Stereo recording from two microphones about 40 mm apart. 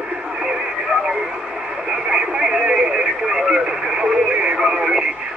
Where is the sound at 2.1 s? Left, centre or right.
Right.